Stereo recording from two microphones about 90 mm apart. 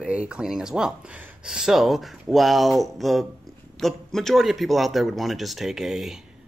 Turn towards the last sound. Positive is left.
turn(degrees=-5)  # may be behind; listen again after turning